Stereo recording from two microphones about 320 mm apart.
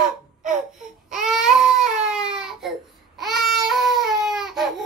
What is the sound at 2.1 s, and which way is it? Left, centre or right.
Babbling, centre.